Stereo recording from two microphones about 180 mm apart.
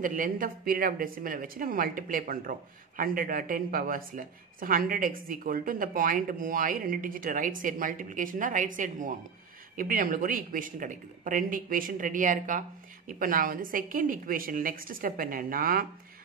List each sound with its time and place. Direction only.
0.0 s a woman's voice: 50° right (ahead or behind)